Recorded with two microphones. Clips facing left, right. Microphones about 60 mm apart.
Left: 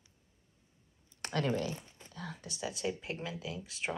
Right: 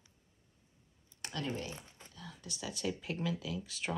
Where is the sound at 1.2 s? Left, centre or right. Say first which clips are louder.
Left 6 dB; left.